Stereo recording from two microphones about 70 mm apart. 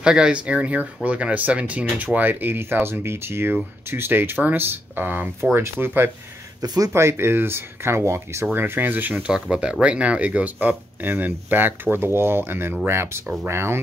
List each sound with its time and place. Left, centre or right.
0.0 s speech: centre; by 6.1 s right
6.6 s speech: right
6.9 s speech: right
8.5 s speech: right
9.2 s speech: centre; by 13.7 s right